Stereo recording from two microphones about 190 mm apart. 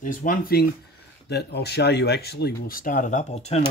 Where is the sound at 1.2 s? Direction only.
60° left (ahead or behind); by 3.6 s 35° left (ahead or behind).